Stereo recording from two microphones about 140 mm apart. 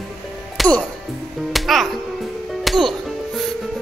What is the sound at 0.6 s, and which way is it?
A child's voice, 5° left (ahead or behind).